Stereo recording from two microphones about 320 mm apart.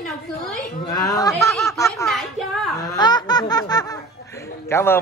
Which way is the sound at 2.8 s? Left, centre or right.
Centre.